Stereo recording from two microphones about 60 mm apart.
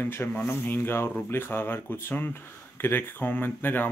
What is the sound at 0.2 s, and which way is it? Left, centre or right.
Speech, left.